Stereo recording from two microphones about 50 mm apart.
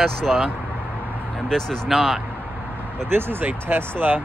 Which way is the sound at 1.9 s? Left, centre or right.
Centre.